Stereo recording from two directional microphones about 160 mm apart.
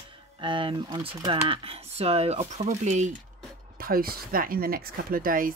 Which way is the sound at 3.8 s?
65° right (ahead or behind).